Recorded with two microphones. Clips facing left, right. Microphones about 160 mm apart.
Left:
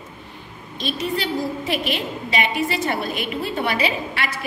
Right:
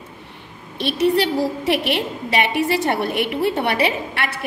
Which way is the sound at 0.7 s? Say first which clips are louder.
Right 7 dB; 70° right (ahead or behind).